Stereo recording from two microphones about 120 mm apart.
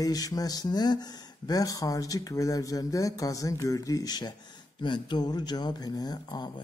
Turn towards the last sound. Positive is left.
turn(degrees=35)  # may be behind; listen again after turning